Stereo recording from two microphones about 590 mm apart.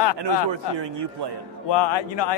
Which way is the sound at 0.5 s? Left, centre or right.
Right.